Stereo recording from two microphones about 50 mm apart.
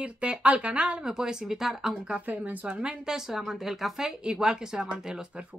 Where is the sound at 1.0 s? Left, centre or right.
Centre.